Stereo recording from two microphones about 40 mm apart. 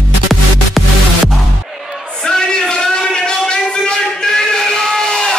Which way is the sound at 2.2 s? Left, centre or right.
Centre.